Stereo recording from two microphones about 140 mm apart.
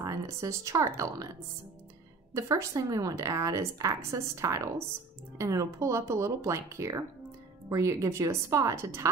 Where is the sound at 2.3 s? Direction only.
25° right (ahead or behind).